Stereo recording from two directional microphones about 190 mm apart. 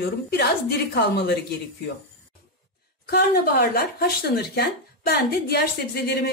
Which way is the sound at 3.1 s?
55° left (ahead or behind).